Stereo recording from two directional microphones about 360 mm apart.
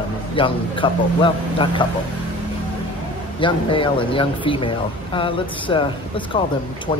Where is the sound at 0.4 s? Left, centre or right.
Centre.